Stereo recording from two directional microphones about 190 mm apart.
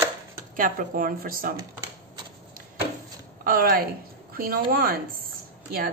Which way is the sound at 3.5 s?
50° right (ahead or behind).